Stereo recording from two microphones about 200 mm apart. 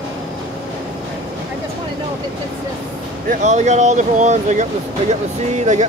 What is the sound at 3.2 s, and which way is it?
Speech, 35° right (ahead or behind).